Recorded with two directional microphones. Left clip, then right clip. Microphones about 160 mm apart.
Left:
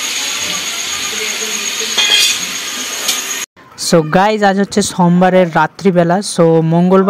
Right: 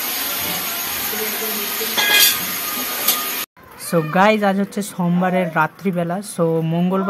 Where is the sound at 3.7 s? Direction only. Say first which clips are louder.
Left 6 dB; 45° left (ahead or behind).